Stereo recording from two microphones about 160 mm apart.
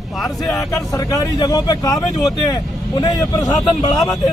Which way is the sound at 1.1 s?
20° left (ahead or behind).